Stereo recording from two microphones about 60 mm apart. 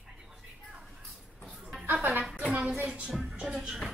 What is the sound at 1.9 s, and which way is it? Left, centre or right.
Music, right.